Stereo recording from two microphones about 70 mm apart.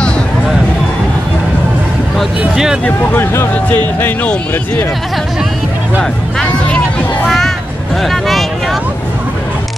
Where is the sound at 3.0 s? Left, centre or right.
Left.